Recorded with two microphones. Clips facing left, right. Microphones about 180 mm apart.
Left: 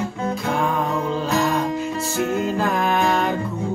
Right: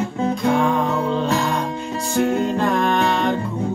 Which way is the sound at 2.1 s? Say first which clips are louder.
Right 5 dB; 30° right (ahead or behind).